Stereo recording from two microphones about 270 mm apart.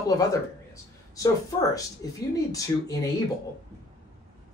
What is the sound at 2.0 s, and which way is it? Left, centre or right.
Speech, centre.